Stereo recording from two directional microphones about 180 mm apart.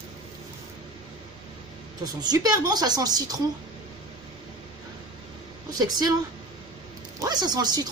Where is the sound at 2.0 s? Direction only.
20° right (ahead or behind).